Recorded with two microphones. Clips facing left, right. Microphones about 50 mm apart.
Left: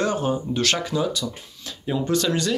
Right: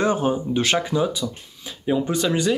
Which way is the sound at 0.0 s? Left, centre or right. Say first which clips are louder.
Right 2 dB; right.